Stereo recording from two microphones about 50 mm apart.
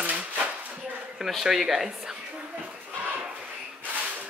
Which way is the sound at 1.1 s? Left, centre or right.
Centre.